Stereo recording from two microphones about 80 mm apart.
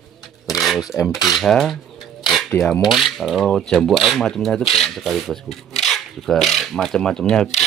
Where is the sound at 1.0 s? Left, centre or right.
Left.